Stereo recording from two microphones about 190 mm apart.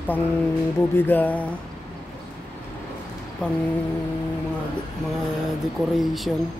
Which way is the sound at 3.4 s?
5° left (ahead or behind).